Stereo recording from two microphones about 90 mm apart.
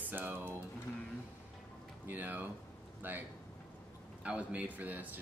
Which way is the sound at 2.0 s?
20° right (ahead or behind).